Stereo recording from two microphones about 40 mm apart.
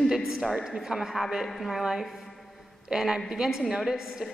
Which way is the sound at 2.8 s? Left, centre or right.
Centre.